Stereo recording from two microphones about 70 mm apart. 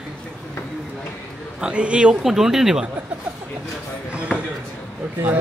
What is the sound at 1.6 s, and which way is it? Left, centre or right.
A man's voice, centre.